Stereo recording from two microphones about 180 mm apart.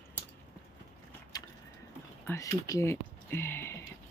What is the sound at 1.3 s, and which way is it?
Vehicle, 20° left (ahead or behind).